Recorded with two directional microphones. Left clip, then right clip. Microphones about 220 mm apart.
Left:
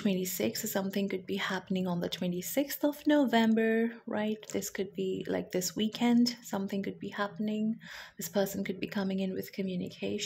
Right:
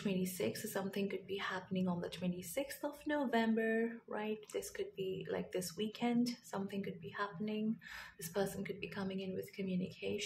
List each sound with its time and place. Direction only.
0.0 s a woman's voice: 30° left (ahead or behind)